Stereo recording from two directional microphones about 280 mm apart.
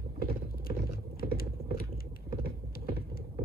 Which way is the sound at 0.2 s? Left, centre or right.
Left.